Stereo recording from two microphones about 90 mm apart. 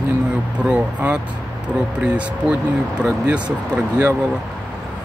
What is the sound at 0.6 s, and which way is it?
Speech, 10° right (ahead or behind).